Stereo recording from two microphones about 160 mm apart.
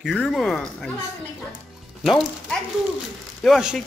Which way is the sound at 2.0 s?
Centre (ahead or behind).